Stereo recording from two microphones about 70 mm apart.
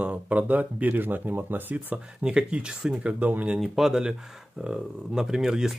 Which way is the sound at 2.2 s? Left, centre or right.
Centre.